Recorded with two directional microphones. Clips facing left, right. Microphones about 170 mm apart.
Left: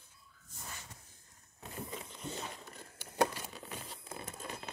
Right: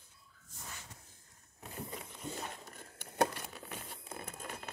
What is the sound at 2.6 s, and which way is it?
Tearing, 55° right (ahead or behind).